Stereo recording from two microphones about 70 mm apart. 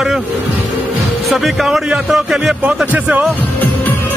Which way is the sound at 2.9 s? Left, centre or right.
Right.